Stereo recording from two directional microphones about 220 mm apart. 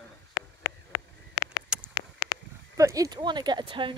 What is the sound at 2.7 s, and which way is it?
Speech, 15° right (ahead or behind).